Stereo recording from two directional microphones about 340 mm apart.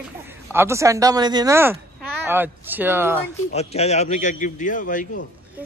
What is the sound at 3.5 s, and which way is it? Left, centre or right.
A man's voice, centre.